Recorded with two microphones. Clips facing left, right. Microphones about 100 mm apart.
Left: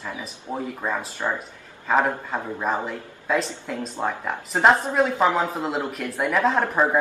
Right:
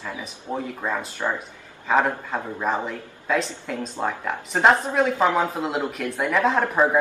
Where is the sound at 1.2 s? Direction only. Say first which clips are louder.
Even; centre (ahead or behind).